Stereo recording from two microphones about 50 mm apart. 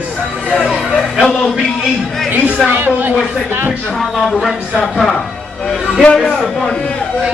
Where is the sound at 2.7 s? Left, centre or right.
Right.